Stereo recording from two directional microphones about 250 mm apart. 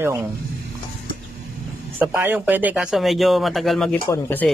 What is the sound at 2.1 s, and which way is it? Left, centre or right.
Speech, centre.